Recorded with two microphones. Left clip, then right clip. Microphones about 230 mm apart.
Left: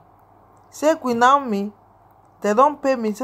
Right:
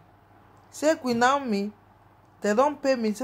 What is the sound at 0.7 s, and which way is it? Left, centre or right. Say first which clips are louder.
Speech: left 5 dB; centre.